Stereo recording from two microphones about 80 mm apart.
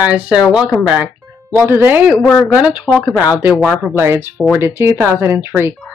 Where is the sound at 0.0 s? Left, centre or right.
Centre.